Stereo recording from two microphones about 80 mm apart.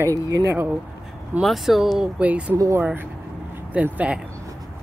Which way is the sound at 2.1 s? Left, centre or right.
Centre.